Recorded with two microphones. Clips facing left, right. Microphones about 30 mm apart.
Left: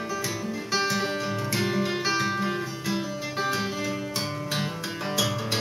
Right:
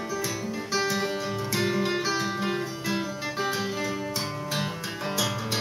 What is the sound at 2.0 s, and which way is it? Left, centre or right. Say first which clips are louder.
Guitar: left 2 dB; centre.